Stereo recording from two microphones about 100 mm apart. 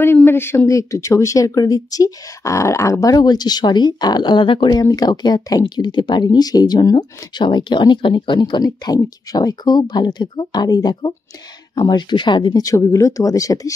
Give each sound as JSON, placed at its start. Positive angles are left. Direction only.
{"t": 0.0, "sound": "speech", "side_deg": 20}